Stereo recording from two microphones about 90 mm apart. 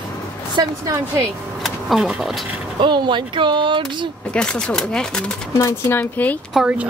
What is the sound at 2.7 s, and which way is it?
Speech, 60° right (ahead or behind).